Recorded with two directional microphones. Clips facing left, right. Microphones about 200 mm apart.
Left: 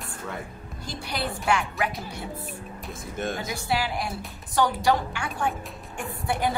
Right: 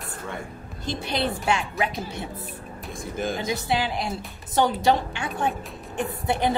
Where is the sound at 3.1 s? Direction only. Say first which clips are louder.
Right 2 dB; centre (ahead or behind).